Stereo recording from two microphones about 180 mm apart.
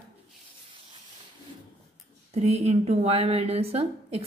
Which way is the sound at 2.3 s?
35° right (ahead or behind).